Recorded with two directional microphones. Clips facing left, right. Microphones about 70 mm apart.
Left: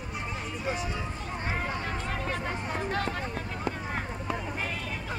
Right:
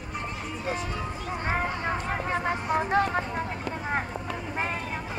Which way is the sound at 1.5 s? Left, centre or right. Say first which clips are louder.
Right 5 dB; right.